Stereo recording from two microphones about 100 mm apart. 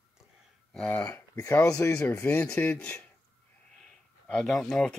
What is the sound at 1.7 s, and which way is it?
Speech, 10° left (ahead or behind).